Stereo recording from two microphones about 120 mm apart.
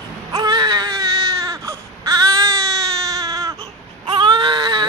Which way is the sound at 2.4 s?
25° right (ahead or behind).